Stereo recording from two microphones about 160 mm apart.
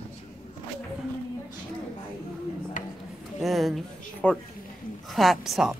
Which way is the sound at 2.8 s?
55° left (ahead or behind).